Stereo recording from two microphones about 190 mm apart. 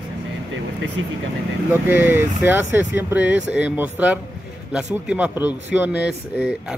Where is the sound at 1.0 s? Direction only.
90° right.